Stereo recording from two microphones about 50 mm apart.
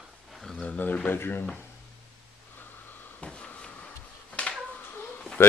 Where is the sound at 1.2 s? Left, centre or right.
Left.